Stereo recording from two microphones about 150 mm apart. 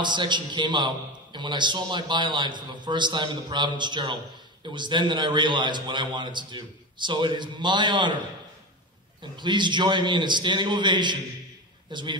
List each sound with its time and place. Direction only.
0.0 s a man's voice: 30° right (ahead or behind)
9.2 s a man's voice: 30° right (ahead or behind)